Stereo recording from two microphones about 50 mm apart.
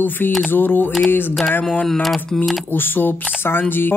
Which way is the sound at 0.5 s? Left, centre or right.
Left.